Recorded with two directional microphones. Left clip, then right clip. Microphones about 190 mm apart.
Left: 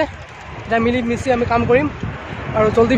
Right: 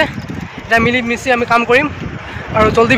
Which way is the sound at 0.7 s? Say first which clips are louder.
Right 5 dB; centre (ahead or behind).